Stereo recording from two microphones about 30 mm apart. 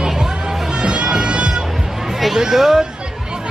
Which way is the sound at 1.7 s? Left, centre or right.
Centre.